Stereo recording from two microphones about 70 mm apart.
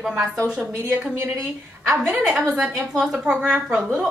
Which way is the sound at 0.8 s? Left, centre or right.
Right.